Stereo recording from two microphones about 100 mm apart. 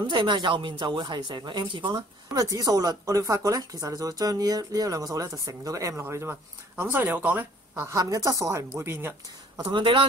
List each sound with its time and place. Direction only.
0.1 s speech: 50° right (ahead or behind)
2.4 s speech: 35° right (ahead or behind)
8.0 s speech: 35° right (ahead or behind)
9.6 s speech: 50° right (ahead or behind)